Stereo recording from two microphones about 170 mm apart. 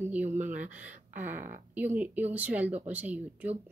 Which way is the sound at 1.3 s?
50° right (ahead or behind).